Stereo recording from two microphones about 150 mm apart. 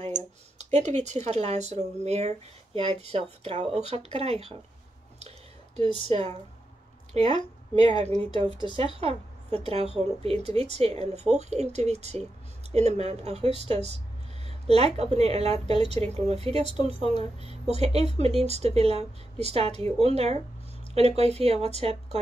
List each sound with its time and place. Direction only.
0.6 s speech: 50° right (ahead or behind)
6.0 s speech: 45° right (ahead or behind)
7.2 s a woman's voice: 30° left (ahead or behind)
8.5 s a woman's voice: 35° right (ahead or behind)